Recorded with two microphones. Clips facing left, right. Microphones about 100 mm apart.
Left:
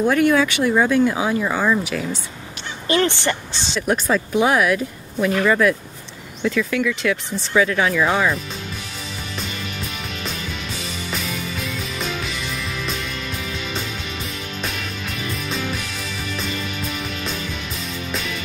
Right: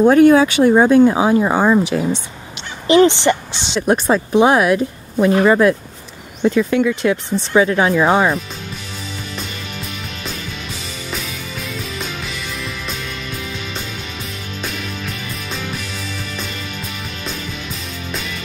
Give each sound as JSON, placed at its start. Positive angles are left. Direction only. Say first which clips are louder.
{"t": 0.0, "sound": "speech", "louder": "right 7 dB", "side_deg": -40}
{"t": 2.9, "sound": "speech", "louder": "right 8 dB", "side_deg": -20}
{"t": 3.8, "sound": "speech", "louder": "right 5 dB", "side_deg": -30}
{"t": 11.1, "sound": "music", "louder": "even", "side_deg": 0}
{"t": 14.6, "sound": "music", "louder": "right 3 dB", "side_deg": 0}